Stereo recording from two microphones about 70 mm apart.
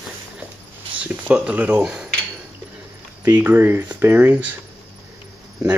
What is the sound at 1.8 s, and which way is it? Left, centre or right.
Speech, centre.